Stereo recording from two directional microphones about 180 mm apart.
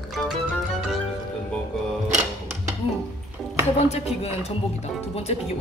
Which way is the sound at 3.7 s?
35° left (ahead or behind).